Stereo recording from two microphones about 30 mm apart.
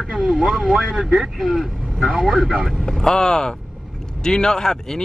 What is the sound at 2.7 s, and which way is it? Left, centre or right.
Speech, centre.